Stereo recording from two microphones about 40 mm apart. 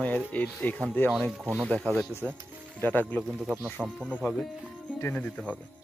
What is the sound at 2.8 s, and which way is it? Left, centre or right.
Speech, left.